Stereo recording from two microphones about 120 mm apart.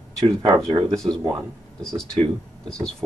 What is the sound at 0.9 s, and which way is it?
Speech, 5° left (ahead or behind).